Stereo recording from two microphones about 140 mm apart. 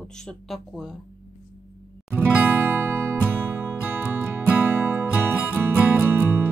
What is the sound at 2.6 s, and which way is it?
Music, 15° right (ahead or behind).